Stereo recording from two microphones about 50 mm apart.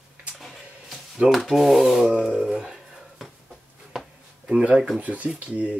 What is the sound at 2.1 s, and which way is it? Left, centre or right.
Speech, centre.